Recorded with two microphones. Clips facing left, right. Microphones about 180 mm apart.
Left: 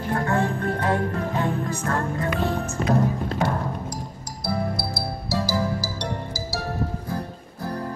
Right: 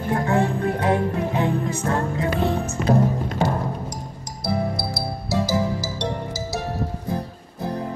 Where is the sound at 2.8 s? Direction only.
35° left (ahead or behind).